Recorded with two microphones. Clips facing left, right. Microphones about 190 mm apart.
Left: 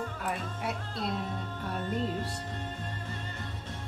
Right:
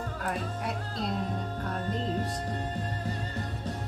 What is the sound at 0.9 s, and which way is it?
Music, 40° right (ahead or behind).